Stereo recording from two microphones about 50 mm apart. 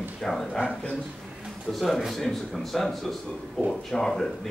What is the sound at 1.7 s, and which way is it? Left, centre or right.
Speech, centre.